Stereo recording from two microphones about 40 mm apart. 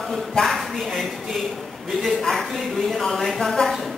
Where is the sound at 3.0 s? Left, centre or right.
Centre.